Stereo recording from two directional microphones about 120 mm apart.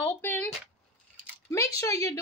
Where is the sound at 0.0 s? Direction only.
15° left (ahead or behind).